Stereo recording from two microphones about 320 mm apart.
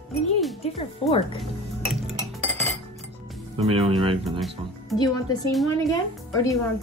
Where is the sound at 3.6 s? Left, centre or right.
Centre.